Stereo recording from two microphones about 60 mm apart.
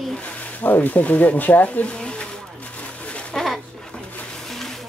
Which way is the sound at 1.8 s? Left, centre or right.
Centre.